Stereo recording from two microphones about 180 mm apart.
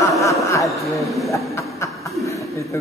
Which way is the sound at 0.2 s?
15° left (ahead or behind).